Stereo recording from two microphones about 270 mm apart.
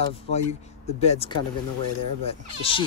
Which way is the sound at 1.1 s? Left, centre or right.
Left.